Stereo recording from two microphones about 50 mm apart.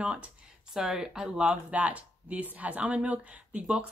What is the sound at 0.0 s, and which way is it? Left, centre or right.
Speech, centre.